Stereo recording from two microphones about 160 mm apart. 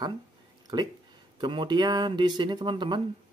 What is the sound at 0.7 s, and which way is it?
Speech, 25° right (ahead or behind).